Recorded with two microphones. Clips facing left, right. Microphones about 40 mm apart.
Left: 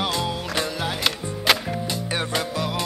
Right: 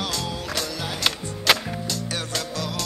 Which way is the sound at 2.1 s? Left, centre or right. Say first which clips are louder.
Left 4 dB; left.